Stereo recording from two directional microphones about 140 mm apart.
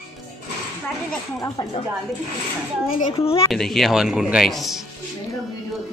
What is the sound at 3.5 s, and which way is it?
Speech, centre (ahead or behind).